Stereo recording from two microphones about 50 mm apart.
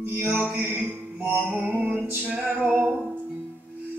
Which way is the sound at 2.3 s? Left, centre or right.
Right.